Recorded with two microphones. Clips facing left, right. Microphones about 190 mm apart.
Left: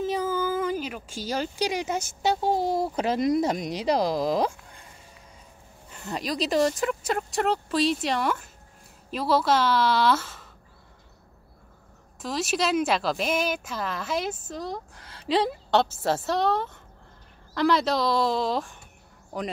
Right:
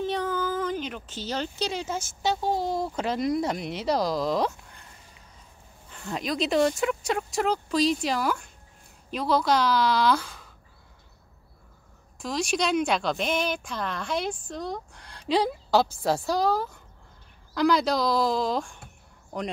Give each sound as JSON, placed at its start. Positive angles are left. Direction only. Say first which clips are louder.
{"t": 0.0, "sound": "speech", "louder": "left 1 dB", "side_deg": 5}
{"t": 3.0, "sound": "speech", "louder": "left 3 dB", "side_deg": 20}
{"t": 4.2, "sound": "speech", "louder": "left 1 dB", "side_deg": 10}
{"t": 5.9, "sound": "speech", "louder": "even", "side_deg": 5}
{"t": 12.2, "sound": "speech", "louder": "even", "side_deg": 0}